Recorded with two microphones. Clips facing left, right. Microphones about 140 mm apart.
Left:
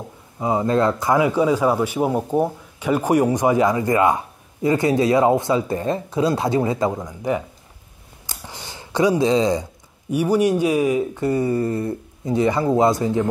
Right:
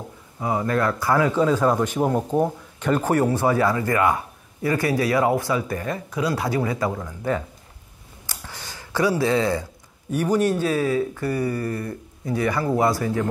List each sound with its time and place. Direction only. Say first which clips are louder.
0.4 s speech: left 4 dB; 20° left (ahead or behind)
8.3 s a sound: left 2 dB; 20° left (ahead or behind)
10.1 s speech: left 3 dB; 10° left (ahead or behind)